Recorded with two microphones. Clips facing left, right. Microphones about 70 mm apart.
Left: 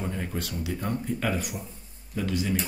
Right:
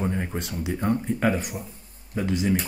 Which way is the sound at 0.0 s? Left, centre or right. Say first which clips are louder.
Right 4 dB; right.